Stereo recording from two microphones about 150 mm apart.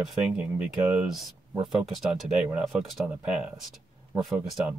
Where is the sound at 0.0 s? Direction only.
5° right (ahead or behind).